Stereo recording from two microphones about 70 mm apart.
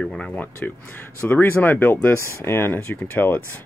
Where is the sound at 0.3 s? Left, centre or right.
Left.